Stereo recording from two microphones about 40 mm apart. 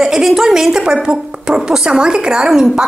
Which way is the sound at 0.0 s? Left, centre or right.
Centre.